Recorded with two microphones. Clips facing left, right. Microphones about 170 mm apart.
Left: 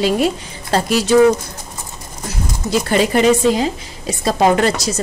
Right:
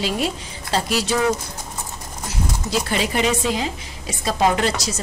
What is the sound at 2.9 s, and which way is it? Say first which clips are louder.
A woman's voice: left 9 dB; 45° left (ahead or behind).